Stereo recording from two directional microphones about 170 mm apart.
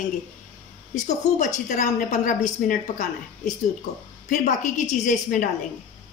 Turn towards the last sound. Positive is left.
turn(degrees=50)  # may be behind; listen again after turning